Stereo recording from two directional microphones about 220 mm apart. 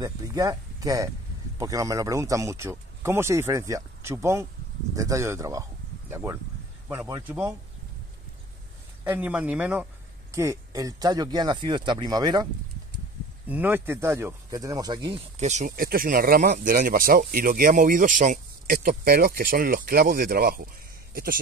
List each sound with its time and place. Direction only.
0.0 s speech: 15° right (ahead or behind)
9.0 s speech: 5° right (ahead or behind)
13.5 s speech: 10° right (ahead or behind); by 21.4 s 40° right (ahead or behind)